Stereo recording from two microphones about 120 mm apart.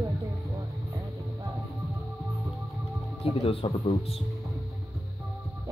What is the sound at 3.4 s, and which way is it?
Speech, 60° left (ahead or behind).